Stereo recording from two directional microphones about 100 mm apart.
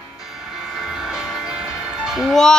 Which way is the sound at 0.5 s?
5° right (ahead or behind).